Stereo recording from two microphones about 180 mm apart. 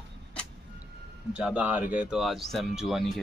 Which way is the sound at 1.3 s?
5° right (ahead or behind).